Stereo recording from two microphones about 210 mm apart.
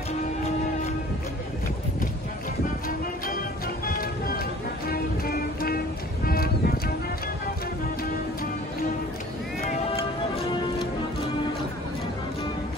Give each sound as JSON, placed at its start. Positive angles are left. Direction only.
{"t": 3.3, "sound": "music", "side_deg": 45}